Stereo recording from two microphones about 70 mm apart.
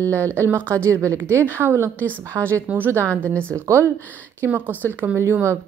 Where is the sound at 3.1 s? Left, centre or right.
Centre.